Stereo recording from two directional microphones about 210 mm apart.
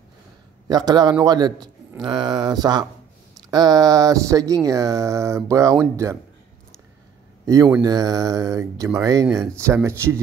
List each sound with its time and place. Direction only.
0.7 s a man's voice: 20° right (ahead or behind)
7.4 s speech: 15° right (ahead or behind)